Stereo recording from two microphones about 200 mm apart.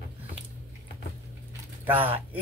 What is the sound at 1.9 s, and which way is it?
Speech, 10° right (ahead or behind).